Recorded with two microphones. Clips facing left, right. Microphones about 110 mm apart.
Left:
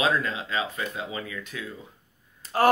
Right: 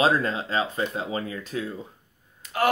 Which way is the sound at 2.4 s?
35° left (ahead or behind).